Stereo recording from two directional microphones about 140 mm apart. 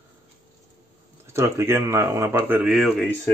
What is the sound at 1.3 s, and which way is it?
Speech, 15° right (ahead or behind).